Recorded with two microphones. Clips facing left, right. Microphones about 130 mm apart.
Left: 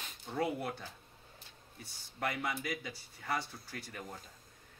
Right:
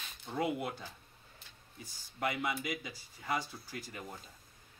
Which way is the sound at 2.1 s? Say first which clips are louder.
Right 2 dB; 10° right (ahead or behind).